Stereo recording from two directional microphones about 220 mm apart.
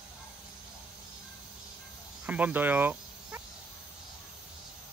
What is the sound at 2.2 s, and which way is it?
Cricket, 5° right (ahead or behind).